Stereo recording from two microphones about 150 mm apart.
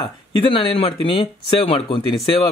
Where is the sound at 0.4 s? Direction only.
35° left (ahead or behind).